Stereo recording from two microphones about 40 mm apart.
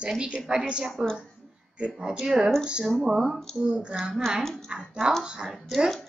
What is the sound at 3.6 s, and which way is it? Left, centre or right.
A woman's voice, right.